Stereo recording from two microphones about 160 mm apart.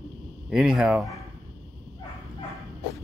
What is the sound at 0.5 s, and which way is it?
Speech, 5° right (ahead or behind).